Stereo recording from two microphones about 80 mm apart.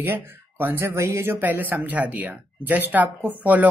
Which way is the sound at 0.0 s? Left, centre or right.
Right.